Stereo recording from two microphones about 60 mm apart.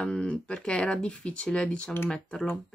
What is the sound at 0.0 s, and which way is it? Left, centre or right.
Speech, centre.